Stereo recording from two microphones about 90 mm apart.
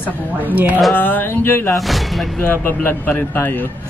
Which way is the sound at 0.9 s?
20° left (ahead or behind).